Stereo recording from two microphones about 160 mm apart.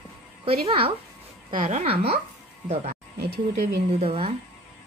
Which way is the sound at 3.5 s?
35° right (ahead or behind).